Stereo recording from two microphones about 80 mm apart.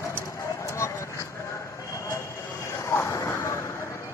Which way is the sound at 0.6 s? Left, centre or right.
Left.